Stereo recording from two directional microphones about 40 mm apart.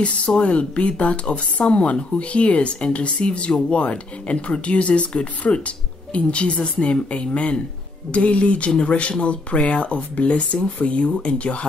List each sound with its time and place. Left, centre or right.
0.0 s speech: left